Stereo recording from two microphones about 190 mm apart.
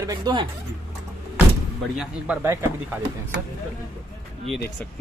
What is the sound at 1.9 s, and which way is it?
Speech, 5° right (ahead or behind).